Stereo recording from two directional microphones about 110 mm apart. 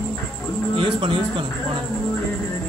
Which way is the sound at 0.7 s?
50° right (ahead or behind).